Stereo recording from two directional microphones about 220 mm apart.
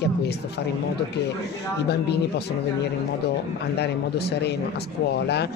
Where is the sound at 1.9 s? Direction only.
50° left (ahead or behind).